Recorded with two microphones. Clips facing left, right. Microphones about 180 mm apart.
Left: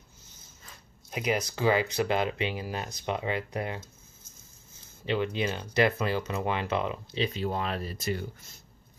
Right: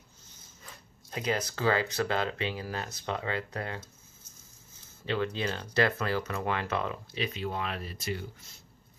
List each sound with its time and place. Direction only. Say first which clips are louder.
1.1 s speech: left 2 dB; 15° left (ahead or behind)
5.0 s speech: left 2 dB; 15° left (ahead or behind)
7.3 s speech: left 3 dB; 35° left (ahead or behind)